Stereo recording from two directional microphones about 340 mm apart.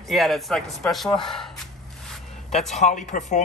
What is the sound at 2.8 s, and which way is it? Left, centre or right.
Speech, left.